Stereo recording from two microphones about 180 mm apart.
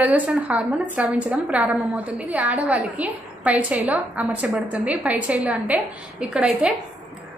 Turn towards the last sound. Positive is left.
turn(degrees=-5)  # may be behind; listen again after turning